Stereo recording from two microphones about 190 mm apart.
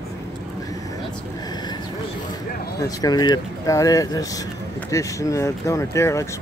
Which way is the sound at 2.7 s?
20° left (ahead or behind).